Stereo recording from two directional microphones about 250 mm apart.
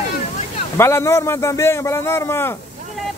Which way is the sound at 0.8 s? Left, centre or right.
Centre.